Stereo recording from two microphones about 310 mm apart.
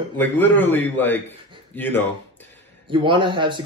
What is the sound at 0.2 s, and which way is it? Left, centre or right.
A man's voice, centre.